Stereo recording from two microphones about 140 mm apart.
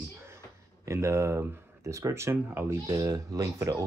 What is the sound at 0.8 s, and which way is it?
Speech, 20° right (ahead or behind).